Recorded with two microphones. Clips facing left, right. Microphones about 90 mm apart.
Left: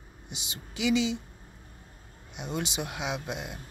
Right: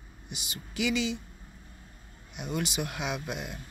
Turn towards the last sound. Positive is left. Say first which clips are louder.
# even
turn(degrees=20)  # may be behind; listen again after turning